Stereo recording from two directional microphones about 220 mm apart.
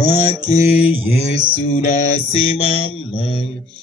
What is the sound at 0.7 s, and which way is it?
Mantra, 5° right (ahead or behind).